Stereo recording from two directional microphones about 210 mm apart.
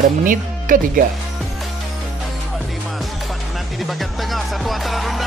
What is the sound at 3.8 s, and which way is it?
Music, centre (ahead or behind).